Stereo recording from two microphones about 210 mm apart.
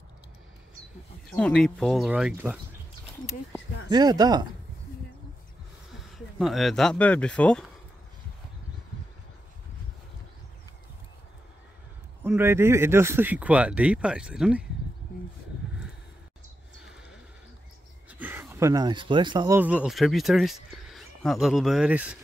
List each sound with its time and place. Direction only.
1.3 s speech: 5° left (ahead or behind)
3.9 s speech: 20° right (ahead or behind)
6.1 s speech: centre (ahead or behind)
12.2 s a man's voice: 10° right (ahead or behind)
18.1 s speech: 10° right (ahead or behind)